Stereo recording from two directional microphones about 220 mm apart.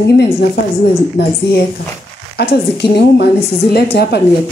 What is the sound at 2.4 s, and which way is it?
Speech, 50° left (ahead or behind).